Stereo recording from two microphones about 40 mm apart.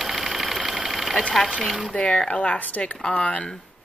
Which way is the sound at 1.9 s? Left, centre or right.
Left.